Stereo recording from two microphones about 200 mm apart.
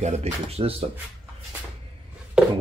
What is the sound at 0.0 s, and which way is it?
Speech, 30° right (ahead or behind).